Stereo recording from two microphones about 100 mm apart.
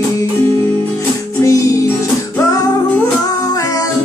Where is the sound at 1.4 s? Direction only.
30° left (ahead or behind).